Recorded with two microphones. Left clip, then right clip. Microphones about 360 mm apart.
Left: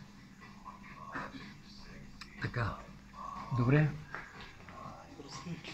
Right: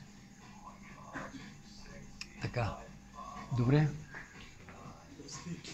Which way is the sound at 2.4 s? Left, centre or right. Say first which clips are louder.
Even; centre.